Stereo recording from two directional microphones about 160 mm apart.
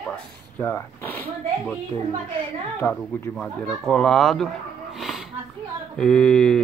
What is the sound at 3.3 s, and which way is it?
Speech, 5° left (ahead or behind).